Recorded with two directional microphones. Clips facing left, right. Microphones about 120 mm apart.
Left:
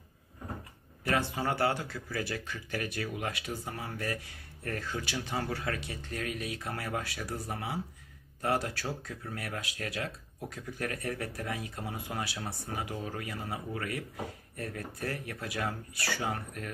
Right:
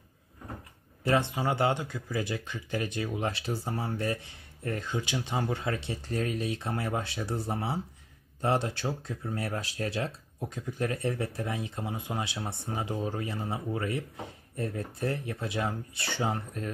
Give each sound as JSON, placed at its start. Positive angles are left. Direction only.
{"t": 1.0, "sound": "speech", "side_deg": -25}